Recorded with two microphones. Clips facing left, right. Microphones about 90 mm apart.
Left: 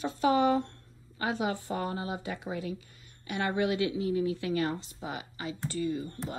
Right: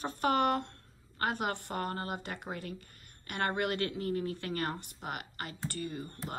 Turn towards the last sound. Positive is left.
turn(degrees=-55)  # may be behind; listen again after turning